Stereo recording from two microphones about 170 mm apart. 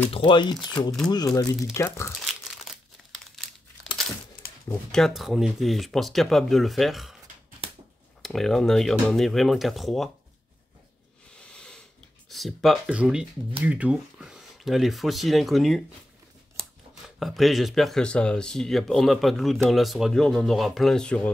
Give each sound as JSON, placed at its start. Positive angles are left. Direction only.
{"t": 0.1, "sound": "speech", "side_deg": 30}
{"t": 2.2, "sound": "crumpling", "side_deg": 0}
{"t": 4.6, "sound": "speech", "side_deg": 5}
{"t": 8.2, "sound": "speech", "side_deg": 0}
{"t": 11.5, "sound": "a sound", "side_deg": 5}
{"t": 12.3, "sound": "speech", "side_deg": 0}
{"t": 17.2, "sound": "speech", "side_deg": 0}